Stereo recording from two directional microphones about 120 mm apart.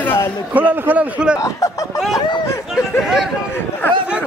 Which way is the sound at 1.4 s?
30° left (ahead or behind).